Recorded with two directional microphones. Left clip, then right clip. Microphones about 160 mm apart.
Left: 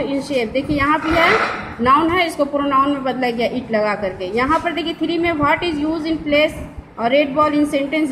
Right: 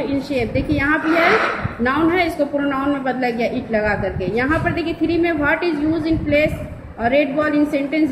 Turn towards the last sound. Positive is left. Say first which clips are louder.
# left 1 dB
turn(degrees=25)  # may be behind; listen again after turning